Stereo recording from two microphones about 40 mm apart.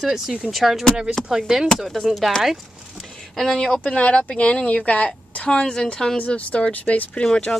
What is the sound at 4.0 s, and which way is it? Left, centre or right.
A woman's voice, left.